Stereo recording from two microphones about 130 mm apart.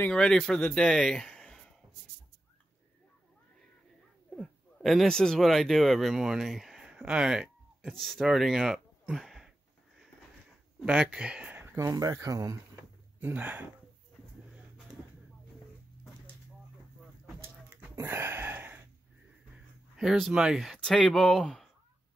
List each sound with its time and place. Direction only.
0.1 s speech: 5° left (ahead or behind)
4.4 s speech: 5° left (ahead or behind)
10.9 s speech: 10° right (ahead or behind)
11.9 s speech: 30° right (ahead or behind)
13.2 s speech: 15° right (ahead or behind)
17.9 s a sound: 20° right (ahead or behind)
20.0 s speech: centre (ahead or behind)